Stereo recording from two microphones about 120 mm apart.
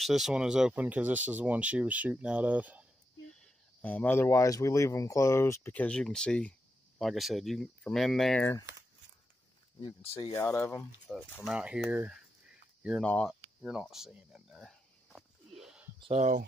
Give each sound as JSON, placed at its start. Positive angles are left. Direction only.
{"t": 0.0, "sound": "speech", "side_deg": 0}
{"t": 3.3, "sound": "speech", "side_deg": 15}
{"t": 10.3, "sound": "speech", "side_deg": 20}
{"t": 11.1, "sound": "speech", "side_deg": -5}
{"t": 13.0, "sound": "speech", "side_deg": 10}
{"t": 13.3, "sound": "a sound", "side_deg": -5}
{"t": 16.0, "sound": "speech", "side_deg": -60}